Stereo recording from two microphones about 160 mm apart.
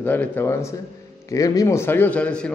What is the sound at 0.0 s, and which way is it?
A man's voice, 10° left (ahead or behind).